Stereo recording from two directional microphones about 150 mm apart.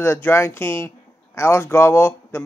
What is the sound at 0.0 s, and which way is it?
Speech, 15° left (ahead or behind).